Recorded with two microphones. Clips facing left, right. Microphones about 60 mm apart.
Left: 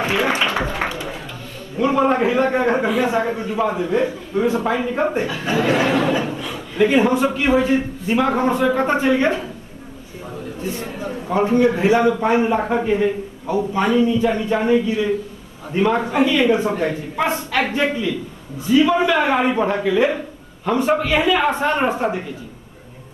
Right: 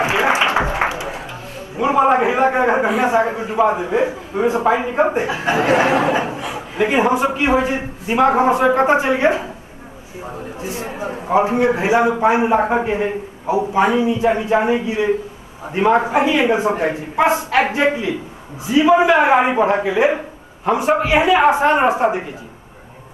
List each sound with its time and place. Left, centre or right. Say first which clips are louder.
0.0 s applause: right 3 dB; centre
1.8 s speech: right 2 dB; centre
10.6 s a man's voice: right 1 dB; centre
12.6 s speech: even; centre